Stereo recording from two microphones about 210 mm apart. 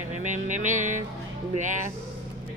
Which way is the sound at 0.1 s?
35° right (ahead or behind).